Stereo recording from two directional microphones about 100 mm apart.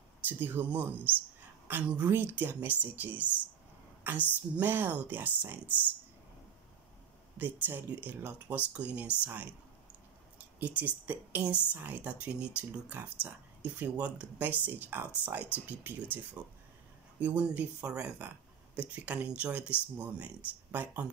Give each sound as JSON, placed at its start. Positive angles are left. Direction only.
{"t": 0.3, "sound": "speech", "side_deg": -20}
{"t": 7.3, "sound": "speech", "side_deg": -15}
{"t": 10.6, "sound": "speech", "side_deg": -15}
{"t": 17.2, "sound": "speech", "side_deg": -15}